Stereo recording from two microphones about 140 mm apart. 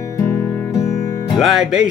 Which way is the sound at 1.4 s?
Centre (ahead or behind).